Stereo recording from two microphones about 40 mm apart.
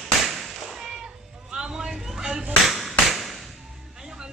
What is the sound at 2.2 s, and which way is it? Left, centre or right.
Clapping, centre.